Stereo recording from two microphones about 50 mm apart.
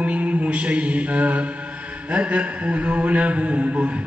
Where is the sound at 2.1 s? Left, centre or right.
Right.